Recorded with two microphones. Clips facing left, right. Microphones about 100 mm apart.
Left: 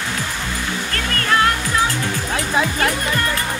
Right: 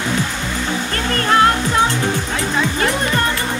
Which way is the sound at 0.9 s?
30° right (ahead or behind).